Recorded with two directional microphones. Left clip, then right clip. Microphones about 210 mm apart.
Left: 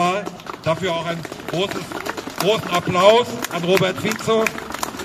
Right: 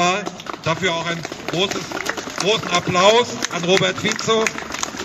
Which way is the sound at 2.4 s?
15° left (ahead or behind).